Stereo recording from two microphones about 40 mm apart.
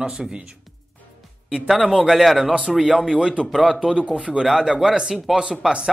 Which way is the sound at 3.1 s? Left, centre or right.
Right.